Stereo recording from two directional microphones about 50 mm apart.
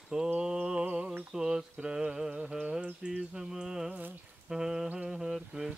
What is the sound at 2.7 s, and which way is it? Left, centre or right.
Insect, centre.